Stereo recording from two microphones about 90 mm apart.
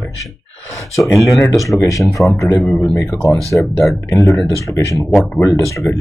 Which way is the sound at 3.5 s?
25° left (ahead or behind).